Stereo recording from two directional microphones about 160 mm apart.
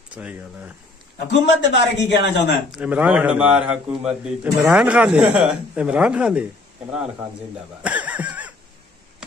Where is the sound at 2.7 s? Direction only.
10° right (ahead or behind).